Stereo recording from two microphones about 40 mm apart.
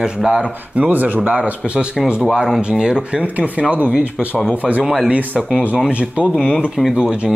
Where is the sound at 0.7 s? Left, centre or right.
Right.